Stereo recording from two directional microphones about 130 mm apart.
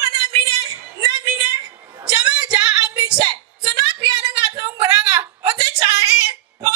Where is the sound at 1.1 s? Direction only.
30° right (ahead or behind).